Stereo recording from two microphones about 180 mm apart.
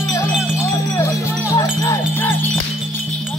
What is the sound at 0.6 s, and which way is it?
Music, 15° left (ahead or behind).